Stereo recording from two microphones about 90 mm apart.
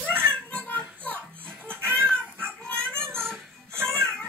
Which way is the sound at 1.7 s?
20° right (ahead or behind).